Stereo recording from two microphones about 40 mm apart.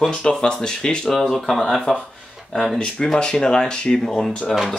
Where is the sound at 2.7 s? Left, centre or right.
Left.